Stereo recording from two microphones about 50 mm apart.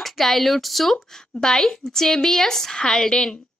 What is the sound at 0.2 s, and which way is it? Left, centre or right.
A woman's voice, centre.